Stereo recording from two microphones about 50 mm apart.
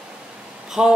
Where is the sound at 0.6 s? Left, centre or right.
Centre.